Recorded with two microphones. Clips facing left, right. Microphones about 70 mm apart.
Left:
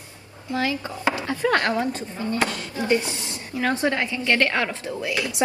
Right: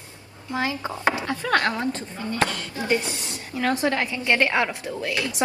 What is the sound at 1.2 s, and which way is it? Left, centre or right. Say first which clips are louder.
A woman's voice: left 1 dB; left.